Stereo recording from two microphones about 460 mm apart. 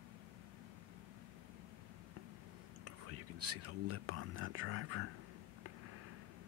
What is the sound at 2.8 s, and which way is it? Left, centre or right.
Speech, right.